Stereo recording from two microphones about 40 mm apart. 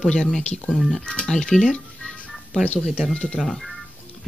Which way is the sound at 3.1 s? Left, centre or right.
Centre.